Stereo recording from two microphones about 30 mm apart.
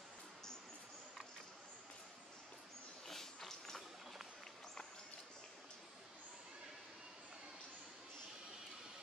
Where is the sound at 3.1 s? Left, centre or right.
Centre.